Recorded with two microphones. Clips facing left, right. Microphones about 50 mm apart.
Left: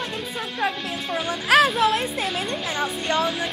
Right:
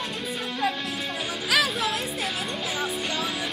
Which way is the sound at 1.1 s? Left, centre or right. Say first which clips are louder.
Left 8 dB; left.